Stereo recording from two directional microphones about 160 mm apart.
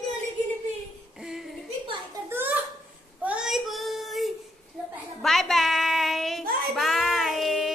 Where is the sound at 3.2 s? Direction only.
5° right (ahead or behind).